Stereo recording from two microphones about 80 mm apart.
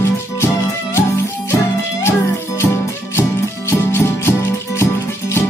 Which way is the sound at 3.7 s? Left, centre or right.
Left.